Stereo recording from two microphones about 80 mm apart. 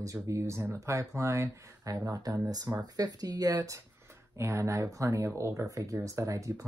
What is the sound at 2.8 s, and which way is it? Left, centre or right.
Speech, right.